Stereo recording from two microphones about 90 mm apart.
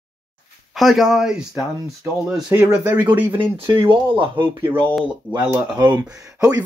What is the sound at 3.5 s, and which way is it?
Speech, 65° right (ahead or behind).